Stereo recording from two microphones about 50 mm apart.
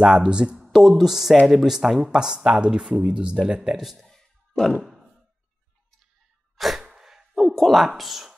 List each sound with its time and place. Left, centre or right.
0.0 s speech: centre
0.6 s speech: centre
3.7 s a sound: centre
4.8 s sigh: centre
6.5 s sneeze: centre
7.3 s a sound: centre
7.9 s speech: centre